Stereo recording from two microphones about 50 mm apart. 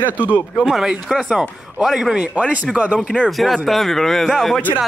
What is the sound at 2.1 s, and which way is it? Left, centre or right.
Speech, right.